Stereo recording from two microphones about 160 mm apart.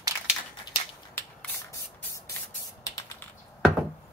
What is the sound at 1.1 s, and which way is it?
Spray, 10° left (ahead or behind).